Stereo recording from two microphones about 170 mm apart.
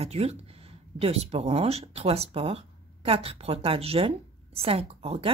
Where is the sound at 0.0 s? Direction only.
35° right (ahead or behind).